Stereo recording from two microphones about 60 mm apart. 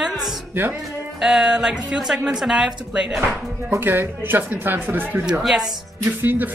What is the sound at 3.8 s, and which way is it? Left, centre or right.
Speech, right.